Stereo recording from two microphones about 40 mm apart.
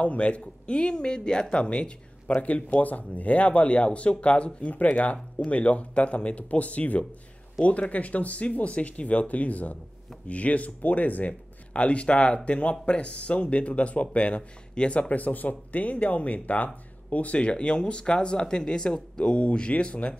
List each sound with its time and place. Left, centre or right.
0.0 s speech: left
0.7 s speech: left